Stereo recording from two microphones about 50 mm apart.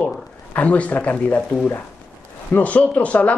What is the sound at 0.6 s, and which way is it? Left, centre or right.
Speech, left.